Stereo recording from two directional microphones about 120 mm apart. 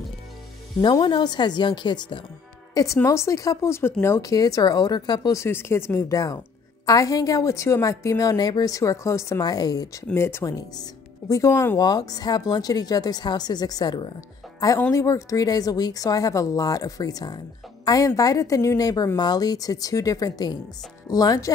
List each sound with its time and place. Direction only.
0.7 s speech: 40° left (ahead or behind)
2.7 s a woman's voice: 25° left (ahead or behind)
14.9 s a woman's voice: 25° left (ahead or behind)